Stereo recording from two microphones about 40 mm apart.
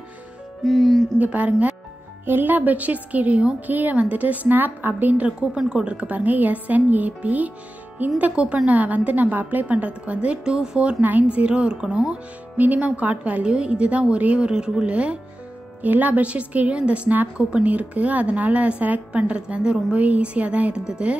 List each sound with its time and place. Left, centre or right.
0.7 s music: centre
1.1 s a woman's voice: right
2.2 s a woman's voice: right
3.6 s a woman's voice: right
5.1 s a woman's voice: right
10.5 s a woman's voice: centre
11.0 s a woman's voice: right
11.2 s a woman's voice: right
12.5 s a woman's voice: right
14.5 s a woman's voice: centre
14.9 s a woman's voice: right
15.8 s a woman's voice: right
20.0 s a woman's voice: right
20.7 s a woman's voice: centre